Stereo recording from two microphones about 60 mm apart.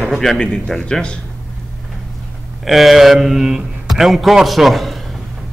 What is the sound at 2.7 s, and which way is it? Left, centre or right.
A man's voice, centre.